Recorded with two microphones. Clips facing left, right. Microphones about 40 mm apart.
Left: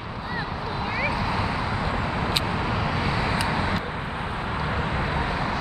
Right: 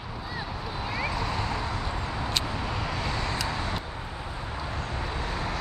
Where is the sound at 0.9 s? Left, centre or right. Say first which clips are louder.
Left 4 dB; centre.